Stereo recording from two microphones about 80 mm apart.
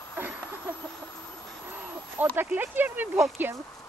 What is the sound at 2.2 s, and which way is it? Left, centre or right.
Speech, right.